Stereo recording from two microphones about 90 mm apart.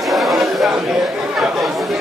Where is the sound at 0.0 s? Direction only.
Centre (ahead or behind).